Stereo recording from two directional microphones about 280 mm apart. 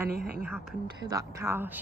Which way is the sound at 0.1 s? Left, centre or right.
Right.